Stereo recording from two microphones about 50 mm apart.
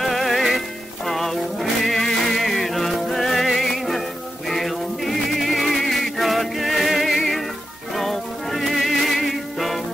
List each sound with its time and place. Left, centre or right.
0.0 s music: centre